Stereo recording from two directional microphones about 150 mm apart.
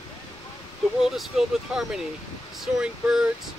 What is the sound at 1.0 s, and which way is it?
Speech, 5° right (ahead or behind).